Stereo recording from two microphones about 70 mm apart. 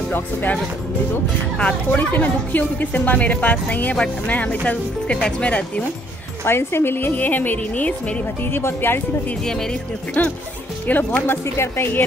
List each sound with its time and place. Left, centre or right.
0.1 s a woman's voice: left
1.6 s a woman's voice: centre
6.4 s a woman's voice: left
10.2 s a woman's voice: left